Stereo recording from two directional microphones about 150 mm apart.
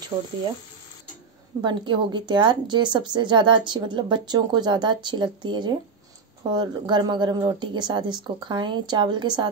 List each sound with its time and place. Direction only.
0.1 s speech: 15° right (ahead or behind)
1.6 s a woman's voice: 30° right (ahead or behind)